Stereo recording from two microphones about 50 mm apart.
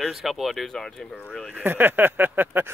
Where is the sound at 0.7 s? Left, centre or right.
Centre.